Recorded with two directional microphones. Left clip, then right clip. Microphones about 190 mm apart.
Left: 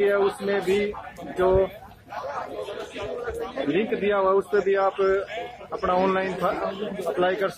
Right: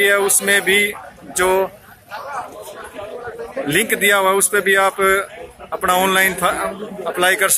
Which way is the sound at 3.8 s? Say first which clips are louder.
Right 9 dB; 10° right (ahead or behind).